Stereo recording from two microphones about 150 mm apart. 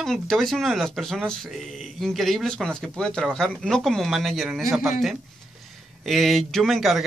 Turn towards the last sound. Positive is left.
turn(degrees=0)  # may be behind; listen again after turning